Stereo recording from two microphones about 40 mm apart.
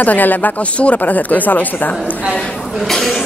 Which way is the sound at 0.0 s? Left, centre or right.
Left.